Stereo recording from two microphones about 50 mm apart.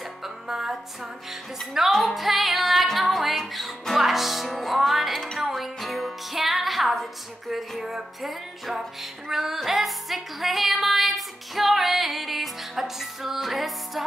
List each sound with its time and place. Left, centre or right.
0.2 s music: centre